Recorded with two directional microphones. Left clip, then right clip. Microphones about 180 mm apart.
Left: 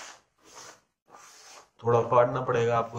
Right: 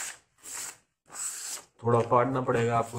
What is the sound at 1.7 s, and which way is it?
Speech, 40° right (ahead or behind).